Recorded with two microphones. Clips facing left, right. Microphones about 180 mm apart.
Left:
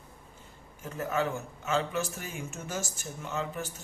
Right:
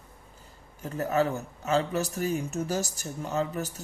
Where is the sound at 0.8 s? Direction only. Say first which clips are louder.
Right 5 dB; 40° right (ahead or behind).